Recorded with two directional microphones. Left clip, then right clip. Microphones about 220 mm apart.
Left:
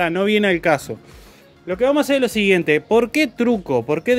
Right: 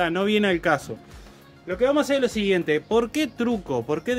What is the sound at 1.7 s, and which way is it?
Speech, 40° left (ahead or behind).